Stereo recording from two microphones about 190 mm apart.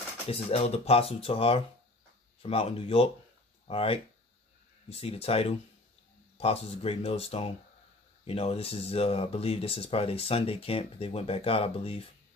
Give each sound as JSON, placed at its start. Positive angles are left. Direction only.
{"t": 0.3, "sound": "speech", "side_deg": 35}